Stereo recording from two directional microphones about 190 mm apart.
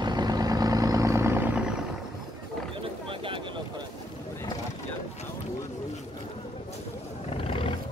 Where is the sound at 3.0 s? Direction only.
25° right (ahead or behind).